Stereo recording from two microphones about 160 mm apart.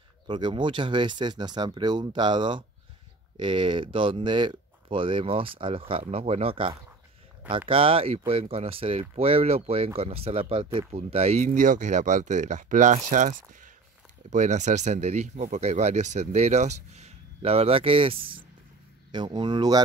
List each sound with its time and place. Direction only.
0.3 s speech: 30° right (ahead or behind)
11.4 s speech: 55° right (ahead or behind); by 19.8 s 25° right (ahead or behind)